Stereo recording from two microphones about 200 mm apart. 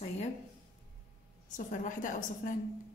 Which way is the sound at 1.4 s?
40° left (ahead or behind).